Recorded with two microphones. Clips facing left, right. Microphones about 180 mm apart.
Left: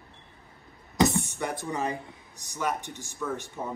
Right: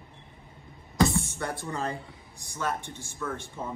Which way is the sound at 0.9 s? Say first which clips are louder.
Left 1 dB; 20° left (ahead or behind).